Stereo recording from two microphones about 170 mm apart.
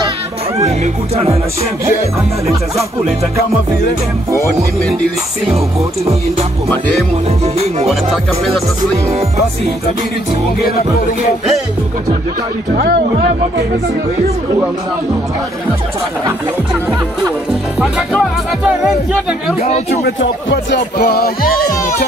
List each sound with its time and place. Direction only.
0.6 s speech: 40° right (ahead or behind)
7.4 s speech: 40° right (ahead or behind)
12.7 s speech: 65° right (ahead or behind)
19.9 s music: 70° left (ahead or behind)